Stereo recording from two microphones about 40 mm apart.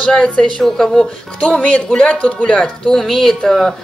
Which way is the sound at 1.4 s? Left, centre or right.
Left.